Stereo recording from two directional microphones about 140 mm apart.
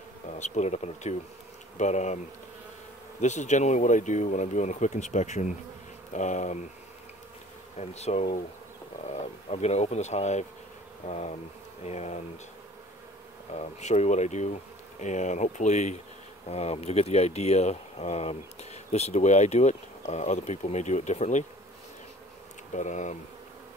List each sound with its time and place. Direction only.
0.4 s speech: 55° left (ahead or behind)
1.8 s bee: 60° left (ahead or behind)
3.2 s bee: 55° left (ahead or behind)
7.8 s speech: 50° left (ahead or behind)
13.5 s bee: 50° left (ahead or behind)
16.4 s speech: 50° left (ahead or behind)
22.7 s bee: 60° left (ahead or behind)